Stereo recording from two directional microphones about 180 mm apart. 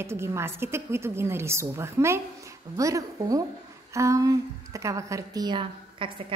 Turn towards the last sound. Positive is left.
turn(degrees=-30)  # may be behind; listen again after turning